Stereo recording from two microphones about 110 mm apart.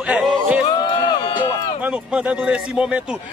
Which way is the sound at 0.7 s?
45° left (ahead or behind).